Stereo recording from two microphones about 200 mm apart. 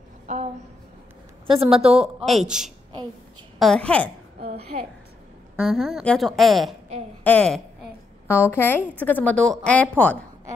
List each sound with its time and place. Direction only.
1.5 s a woman's voice: 30° right (ahead or behind)
2.2 s a woman's voice: centre (ahead or behind)
4.6 s a woman's voice: 30° right (ahead or behind)
5.6 s a woman's voice: centre (ahead or behind)